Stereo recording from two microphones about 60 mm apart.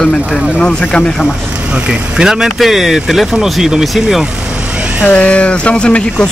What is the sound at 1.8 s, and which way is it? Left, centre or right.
Speech, centre.